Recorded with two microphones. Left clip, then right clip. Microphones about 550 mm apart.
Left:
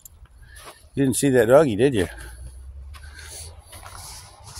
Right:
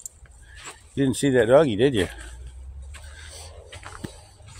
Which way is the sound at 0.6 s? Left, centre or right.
Left.